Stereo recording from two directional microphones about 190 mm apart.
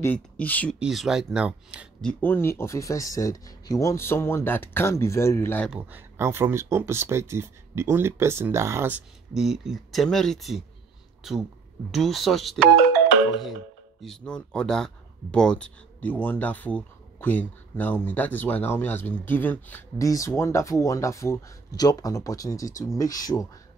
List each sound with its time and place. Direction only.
0.0 s speech: 10° left (ahead or behind)
0.7 s speech: 5° right (ahead or behind)
2.0 s speech: 5° left (ahead or behind)
5.7 s speech: 10° right (ahead or behind)
11.9 s speech: centre (ahead or behind)
14.0 s speech: 5° left (ahead or behind)